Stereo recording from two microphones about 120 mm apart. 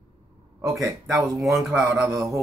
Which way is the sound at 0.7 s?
Centre (ahead or behind).